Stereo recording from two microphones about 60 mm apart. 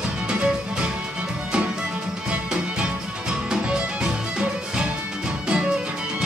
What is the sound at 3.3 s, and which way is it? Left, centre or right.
Music, centre.